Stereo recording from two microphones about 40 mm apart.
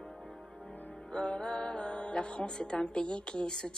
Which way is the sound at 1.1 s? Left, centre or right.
Left.